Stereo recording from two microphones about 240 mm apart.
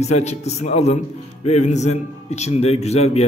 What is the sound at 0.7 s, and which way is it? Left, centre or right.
A man's voice, left.